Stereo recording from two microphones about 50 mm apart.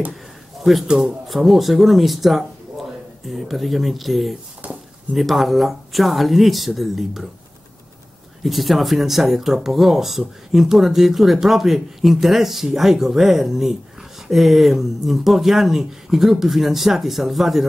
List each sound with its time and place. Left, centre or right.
1.2 s speech: centre
4.6 s a sound: right
5.1 s speech: centre
8.5 s speech: centre